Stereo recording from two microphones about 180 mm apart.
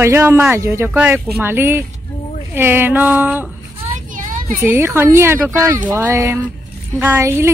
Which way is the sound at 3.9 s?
45° right (ahead or behind).